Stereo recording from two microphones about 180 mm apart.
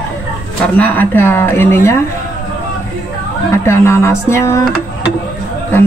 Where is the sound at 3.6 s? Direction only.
15° left (ahead or behind).